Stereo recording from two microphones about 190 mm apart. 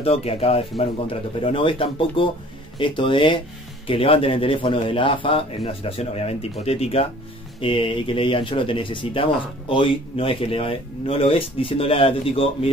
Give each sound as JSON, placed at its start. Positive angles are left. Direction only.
{"t": 0.0, "sound": "speech", "side_deg": 30}